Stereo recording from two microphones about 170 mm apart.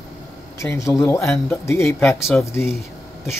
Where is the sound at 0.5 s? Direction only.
20° left (ahead or behind).